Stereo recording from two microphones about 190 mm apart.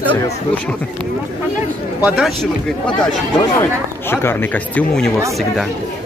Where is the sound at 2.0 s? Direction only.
Centre (ahead or behind).